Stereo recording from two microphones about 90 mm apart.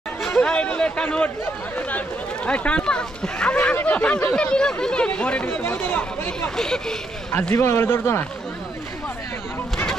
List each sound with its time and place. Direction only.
0.2 s a sound: 5° left (ahead or behind)
1.8 s speech: 15° left (ahead or behind)
6.5 s speech: 5° left (ahead or behind)
7.5 s speech: 30° left (ahead or behind)